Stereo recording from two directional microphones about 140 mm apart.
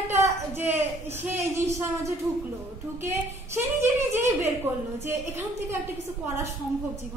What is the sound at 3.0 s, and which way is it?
A woman's voice, 15° right (ahead or behind).